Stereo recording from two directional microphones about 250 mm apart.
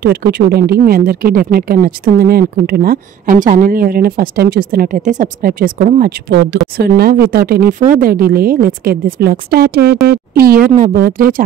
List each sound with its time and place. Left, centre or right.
0.0 s speech: right